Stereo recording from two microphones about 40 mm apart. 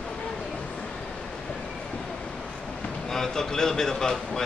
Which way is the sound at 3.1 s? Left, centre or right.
Centre.